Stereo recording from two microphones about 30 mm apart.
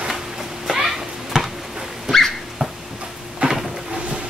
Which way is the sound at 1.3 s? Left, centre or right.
Centre.